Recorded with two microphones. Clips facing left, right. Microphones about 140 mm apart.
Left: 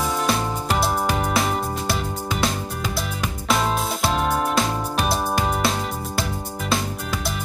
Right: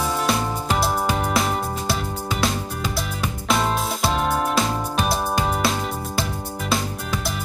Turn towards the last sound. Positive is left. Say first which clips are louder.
# even
turn(degrees=0)  # may be behind; listen again after turning